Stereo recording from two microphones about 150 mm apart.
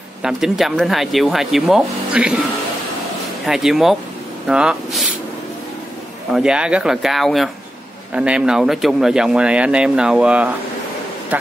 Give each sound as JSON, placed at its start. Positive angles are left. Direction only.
{"t": 0.2, "sound": "speech", "side_deg": 0}
{"t": 3.4, "sound": "speech", "side_deg": 0}
{"t": 6.3, "sound": "speech", "side_deg": -5}